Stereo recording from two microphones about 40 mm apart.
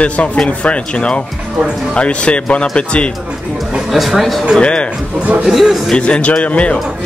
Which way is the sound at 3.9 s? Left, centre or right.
Centre.